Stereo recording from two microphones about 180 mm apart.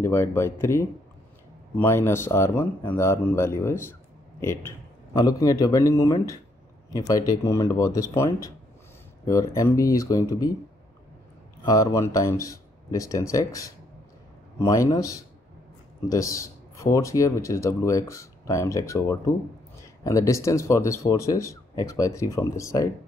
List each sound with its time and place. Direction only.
0.0 s a man's voice: 15° left (ahead or behind)
11.6 s speech: 20° left (ahead or behind)